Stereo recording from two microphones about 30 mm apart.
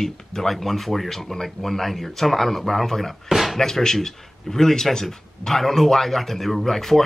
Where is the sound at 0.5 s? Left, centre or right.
Centre.